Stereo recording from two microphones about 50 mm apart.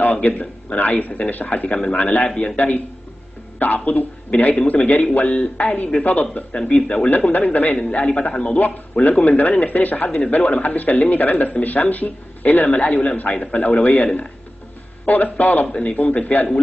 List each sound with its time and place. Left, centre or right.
0.0 s a man's voice: left
3.5 s a man's voice: left
6.7 s a man's voice: left
9.0 s a man's voice: left
10.0 s a man's voice: left
14.0 s a man's voice: left
15.0 s a man's voice: left
15.6 s a man's voice: left